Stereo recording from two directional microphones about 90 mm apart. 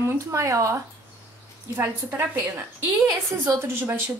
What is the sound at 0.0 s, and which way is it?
Speech, 35° right (ahead or behind).